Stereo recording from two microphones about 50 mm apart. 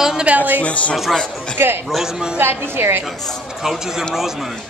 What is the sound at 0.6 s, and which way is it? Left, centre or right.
Speech, left.